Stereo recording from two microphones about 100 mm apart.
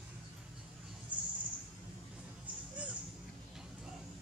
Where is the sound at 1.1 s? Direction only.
15° right (ahead or behind).